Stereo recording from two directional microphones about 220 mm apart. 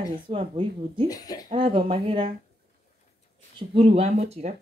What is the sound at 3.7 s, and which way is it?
Speech, 25° right (ahead or behind).